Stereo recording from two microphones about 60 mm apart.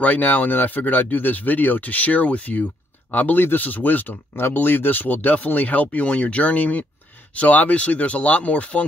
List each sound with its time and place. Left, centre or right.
0.0 s speech: left